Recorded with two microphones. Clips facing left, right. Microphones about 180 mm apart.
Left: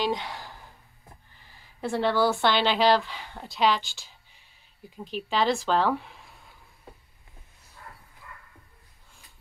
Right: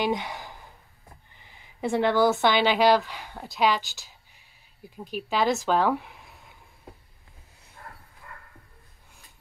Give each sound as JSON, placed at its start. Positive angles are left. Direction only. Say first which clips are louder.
{"t": 0.0, "sound": "speech", "louder": "right 1 dB", "side_deg": -15}
{"t": 1.4, "sound": "a sound", "louder": "right 3 dB", "side_deg": -15}
{"t": 2.4, "sound": "a woman's voice", "louder": "right 2 dB", "side_deg": -10}
{"t": 4.8, "sound": "a woman's voice", "louder": "even", "side_deg": -10}